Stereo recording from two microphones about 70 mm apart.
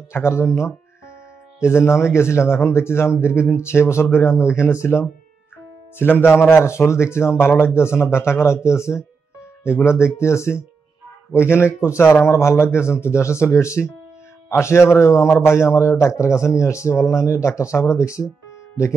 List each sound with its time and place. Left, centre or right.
0.1 s a man's voice: left